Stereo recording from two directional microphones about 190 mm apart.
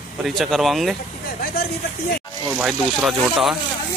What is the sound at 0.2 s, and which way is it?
Speech, centre (ahead or behind).